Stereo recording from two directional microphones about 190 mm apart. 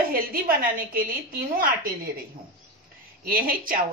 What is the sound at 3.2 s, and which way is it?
Speech, 50° right (ahead or behind).